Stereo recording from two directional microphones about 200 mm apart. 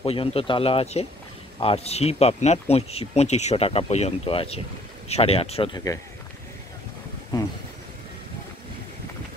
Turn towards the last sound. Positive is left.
turn(degrees=20)  # may be behind; listen again after turning